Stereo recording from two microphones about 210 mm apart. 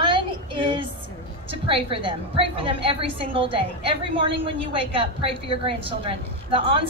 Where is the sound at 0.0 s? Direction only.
25° right (ahead or behind).